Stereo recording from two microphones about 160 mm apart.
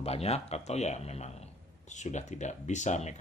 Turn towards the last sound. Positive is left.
turn(degrees=45)  # may be behind; listen again after turning